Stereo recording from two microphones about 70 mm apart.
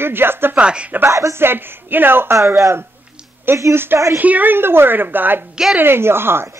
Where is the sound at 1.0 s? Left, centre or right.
Right.